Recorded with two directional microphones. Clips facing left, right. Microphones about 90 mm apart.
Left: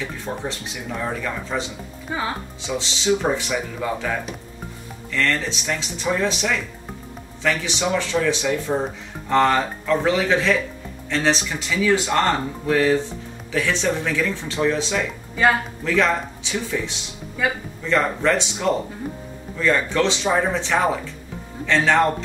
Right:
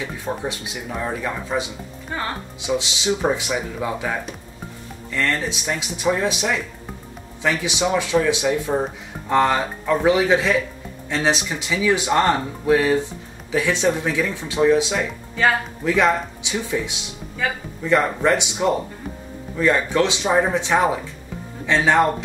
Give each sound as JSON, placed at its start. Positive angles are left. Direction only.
{"t": 0.0, "sound": "speech", "side_deg": -10}
{"t": 2.0, "sound": "speech", "side_deg": 5}
{"t": 2.6, "sound": "speech", "side_deg": -15}
{"t": 5.1, "sound": "speech", "side_deg": -15}
{"t": 15.4, "sound": "speech", "side_deg": 5}
{"t": 15.8, "sound": "speech", "side_deg": -15}